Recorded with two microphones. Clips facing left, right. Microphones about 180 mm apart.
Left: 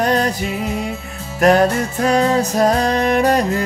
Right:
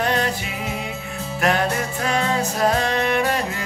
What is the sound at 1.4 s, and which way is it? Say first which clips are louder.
Music: left 8 dB; 40° left (ahead or behind).